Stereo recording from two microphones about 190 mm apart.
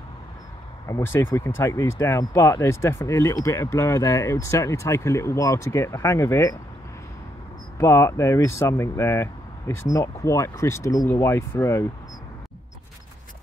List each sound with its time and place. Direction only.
0.8 s speech: 15° left (ahead or behind)
7.8 s speech: 15° left (ahead or behind)